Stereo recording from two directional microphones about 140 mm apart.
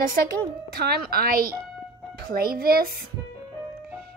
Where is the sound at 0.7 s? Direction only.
90° right.